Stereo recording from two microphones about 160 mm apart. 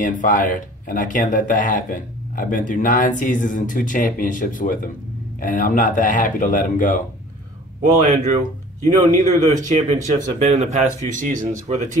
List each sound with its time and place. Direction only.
0.0 s speech: 55° left (ahead or behind)
7.8 s speech: 50° right (ahead or behind)